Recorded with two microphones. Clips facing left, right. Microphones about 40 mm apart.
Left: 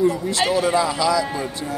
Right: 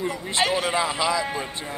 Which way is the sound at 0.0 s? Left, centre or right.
Right.